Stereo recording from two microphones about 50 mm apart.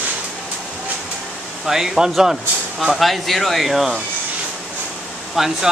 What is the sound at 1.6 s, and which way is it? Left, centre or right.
Speech, centre.